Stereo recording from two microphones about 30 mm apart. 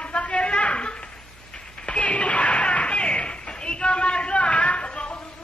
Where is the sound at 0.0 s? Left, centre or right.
Left.